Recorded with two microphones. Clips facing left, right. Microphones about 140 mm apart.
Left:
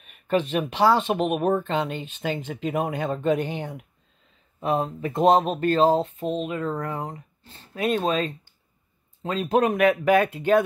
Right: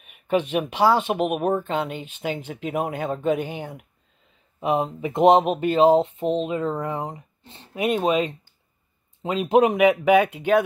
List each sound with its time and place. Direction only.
0.0 s speech: 10° right (ahead or behind)